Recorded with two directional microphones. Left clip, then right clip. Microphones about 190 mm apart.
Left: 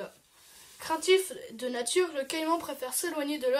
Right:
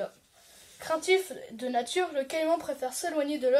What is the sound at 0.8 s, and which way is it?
Speech, 20° left (ahead or behind).